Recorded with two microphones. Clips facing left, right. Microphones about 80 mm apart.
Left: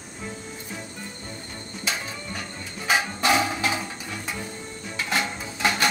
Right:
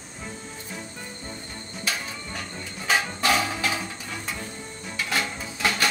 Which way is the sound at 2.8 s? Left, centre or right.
Centre.